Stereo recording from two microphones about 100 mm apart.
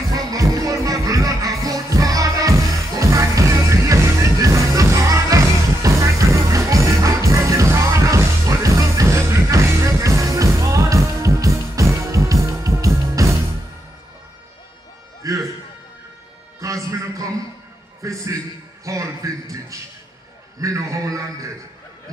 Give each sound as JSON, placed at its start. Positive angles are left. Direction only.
{"t": 0.3, "sound": "music", "side_deg": -35}
{"t": 15.2, "sound": "music", "side_deg": -35}
{"t": 16.6, "sound": "music", "side_deg": -35}
{"t": 18.0, "sound": "a sound", "side_deg": -35}